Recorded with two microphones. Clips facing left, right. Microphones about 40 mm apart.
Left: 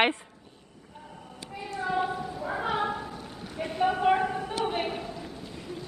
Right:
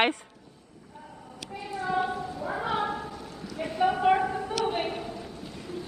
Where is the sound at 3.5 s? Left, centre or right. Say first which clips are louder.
Even; left.